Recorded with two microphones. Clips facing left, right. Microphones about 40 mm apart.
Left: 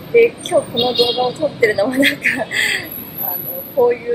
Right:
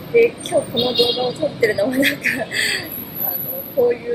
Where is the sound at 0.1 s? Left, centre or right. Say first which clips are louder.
Left 3 dB; centre.